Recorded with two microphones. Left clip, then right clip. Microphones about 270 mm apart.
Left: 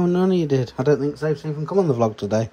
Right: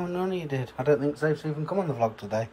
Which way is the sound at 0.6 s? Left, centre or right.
Centre.